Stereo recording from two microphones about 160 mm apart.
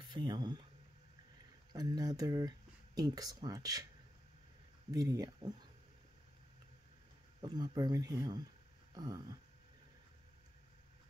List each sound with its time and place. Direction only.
0.0 s speech: 25° right (ahead or behind)
1.7 s speech: 25° right (ahead or behind)
4.9 s speech: 25° right (ahead or behind)
7.4 s speech: 25° right (ahead or behind)